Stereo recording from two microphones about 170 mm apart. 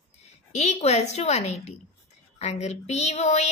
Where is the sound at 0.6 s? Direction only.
40° left (ahead or behind).